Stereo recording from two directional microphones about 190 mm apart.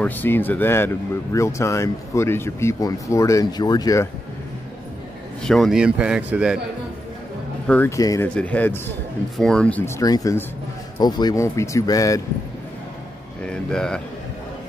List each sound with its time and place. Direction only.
0.0 s speech: 10° left (ahead or behind)
5.4 s a man's voice: centre (ahead or behind)
7.6 s speech: 10° left (ahead or behind)
13.4 s speech: 5° left (ahead or behind)